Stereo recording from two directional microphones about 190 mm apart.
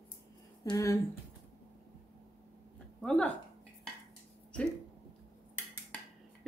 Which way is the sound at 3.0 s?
5° left (ahead or behind).